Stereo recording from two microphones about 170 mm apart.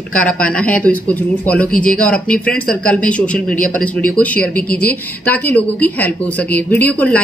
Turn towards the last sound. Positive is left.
turn(degrees=10)  # may be behind; listen again after turning